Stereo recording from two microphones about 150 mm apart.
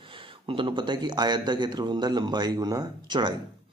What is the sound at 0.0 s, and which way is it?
A man's voice, 35° right (ahead or behind).